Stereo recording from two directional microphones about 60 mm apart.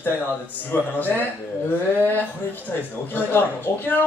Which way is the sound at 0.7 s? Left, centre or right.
Left.